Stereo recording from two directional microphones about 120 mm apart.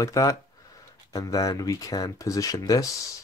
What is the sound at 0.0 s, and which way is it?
Speech, 30° left (ahead or behind).